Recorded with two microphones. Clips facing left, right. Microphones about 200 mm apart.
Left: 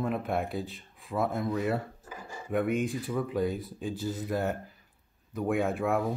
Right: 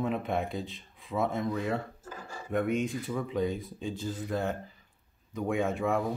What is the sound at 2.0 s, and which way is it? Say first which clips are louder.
Dishes: even; 15° left (ahead or behind).